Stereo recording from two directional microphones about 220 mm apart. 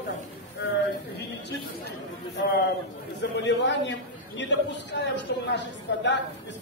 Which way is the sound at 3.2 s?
50° left (ahead or behind).